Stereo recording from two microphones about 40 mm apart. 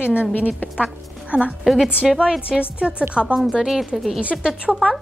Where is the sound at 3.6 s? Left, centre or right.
Centre.